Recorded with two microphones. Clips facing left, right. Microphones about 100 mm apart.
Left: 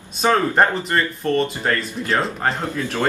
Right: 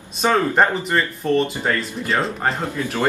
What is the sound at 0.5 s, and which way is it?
Speech, 5° right (ahead or behind).